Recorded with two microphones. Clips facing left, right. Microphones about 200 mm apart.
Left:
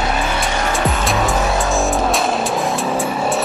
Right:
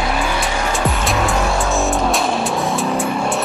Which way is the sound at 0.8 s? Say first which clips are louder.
Even; centre (ahead or behind).